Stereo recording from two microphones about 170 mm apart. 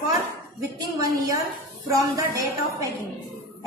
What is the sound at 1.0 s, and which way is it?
Speech, 20° right (ahead or behind).